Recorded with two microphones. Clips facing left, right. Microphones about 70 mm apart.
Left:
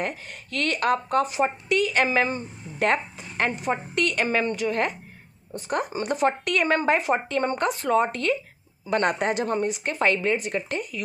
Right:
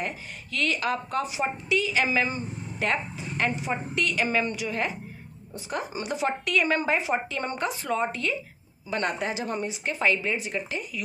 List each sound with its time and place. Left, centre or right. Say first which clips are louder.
0.0 s a woman's voice: left 3 dB; left